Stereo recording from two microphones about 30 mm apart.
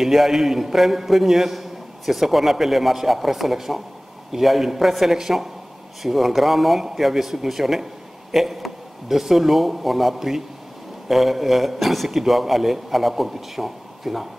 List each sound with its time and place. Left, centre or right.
0.0 s a man's voice: centre